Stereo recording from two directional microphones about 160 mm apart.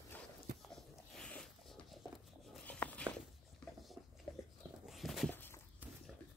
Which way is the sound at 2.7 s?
10° left (ahead or behind).